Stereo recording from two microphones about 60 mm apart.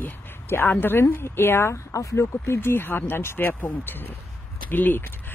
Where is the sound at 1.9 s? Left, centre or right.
Left.